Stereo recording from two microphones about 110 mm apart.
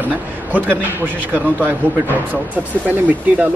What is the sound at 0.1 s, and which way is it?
A man's voice, 15° right (ahead or behind).